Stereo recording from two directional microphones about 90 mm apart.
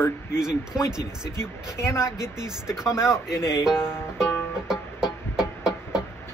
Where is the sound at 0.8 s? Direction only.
10° right (ahead or behind).